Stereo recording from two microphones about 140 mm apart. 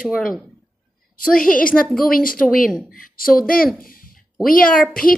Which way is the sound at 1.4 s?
85° left.